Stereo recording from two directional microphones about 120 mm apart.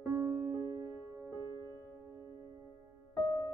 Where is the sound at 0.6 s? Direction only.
30° right (ahead or behind).